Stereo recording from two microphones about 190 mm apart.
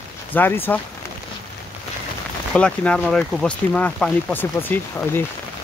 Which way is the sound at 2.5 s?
5° left (ahead or behind).